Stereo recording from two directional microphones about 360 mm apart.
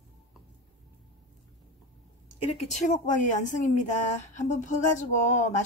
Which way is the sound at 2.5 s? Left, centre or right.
Centre.